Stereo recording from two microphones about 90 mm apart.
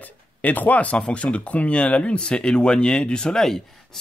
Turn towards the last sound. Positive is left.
turn(degrees=5)  # may be behind; listen again after turning